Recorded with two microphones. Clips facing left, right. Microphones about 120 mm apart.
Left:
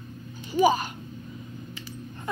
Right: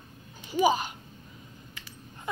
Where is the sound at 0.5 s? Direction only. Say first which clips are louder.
Left 3 dB; 15° right (ahead or behind).